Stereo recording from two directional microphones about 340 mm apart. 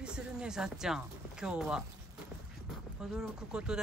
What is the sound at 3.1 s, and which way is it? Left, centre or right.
Speech, centre.